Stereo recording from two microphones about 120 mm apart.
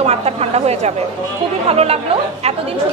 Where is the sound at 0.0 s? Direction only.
60° right (ahead or behind).